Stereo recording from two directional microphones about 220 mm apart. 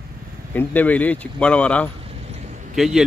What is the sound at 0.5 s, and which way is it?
Speech, 5° left (ahead or behind).